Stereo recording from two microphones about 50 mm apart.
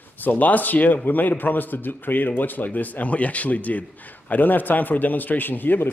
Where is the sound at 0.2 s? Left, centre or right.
Left.